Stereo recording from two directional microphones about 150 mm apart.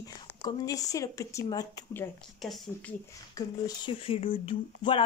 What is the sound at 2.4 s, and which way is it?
Speech, centre (ahead or behind).